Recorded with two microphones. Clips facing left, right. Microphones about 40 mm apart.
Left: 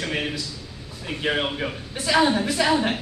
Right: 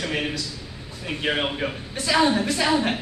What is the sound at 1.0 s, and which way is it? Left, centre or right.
Speech, centre.